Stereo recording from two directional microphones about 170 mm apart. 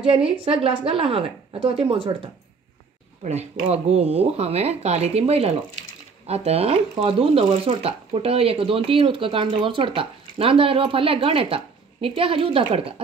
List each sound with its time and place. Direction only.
0.0 s speech: 35° right (ahead or behind)
3.3 s speech: 40° right (ahead or behind)